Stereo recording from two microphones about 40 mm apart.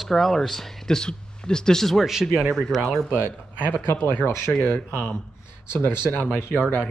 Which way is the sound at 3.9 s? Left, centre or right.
Left.